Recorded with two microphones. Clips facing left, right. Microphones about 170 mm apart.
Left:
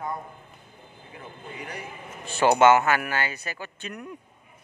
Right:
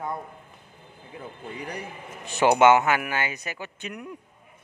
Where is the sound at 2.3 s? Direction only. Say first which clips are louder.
Even; 15° right (ahead or behind).